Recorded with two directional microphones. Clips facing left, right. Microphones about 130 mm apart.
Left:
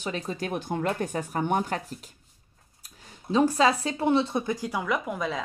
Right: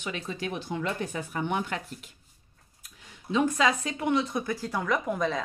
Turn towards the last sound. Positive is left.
turn(degrees=5)  # may be behind; listen again after turning